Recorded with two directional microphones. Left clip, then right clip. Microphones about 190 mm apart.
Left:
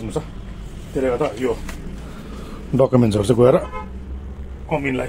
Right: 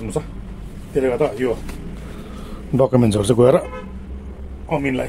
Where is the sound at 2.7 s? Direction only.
5° right (ahead or behind).